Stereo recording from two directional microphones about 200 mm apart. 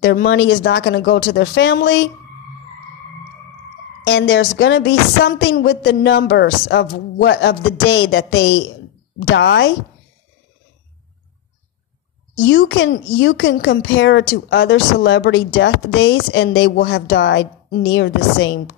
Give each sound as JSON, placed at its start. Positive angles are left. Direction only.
{"t": 0.0, "sound": "speech", "side_deg": 65}
{"t": 4.0, "sound": "a woman's voice", "side_deg": 65}
{"t": 12.4, "sound": "a woman's voice", "side_deg": 65}